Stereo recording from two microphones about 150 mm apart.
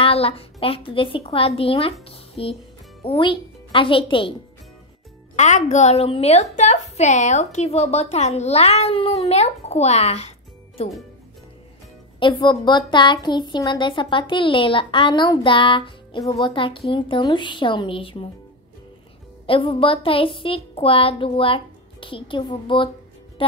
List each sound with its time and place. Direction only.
0.0 s a woman's voice: 40° left (ahead or behind)
5.3 s a woman's voice: 50° left (ahead or behind)
12.2 s a woman's voice: 30° left (ahead or behind)
19.4 s a woman's voice: 35° left (ahead or behind)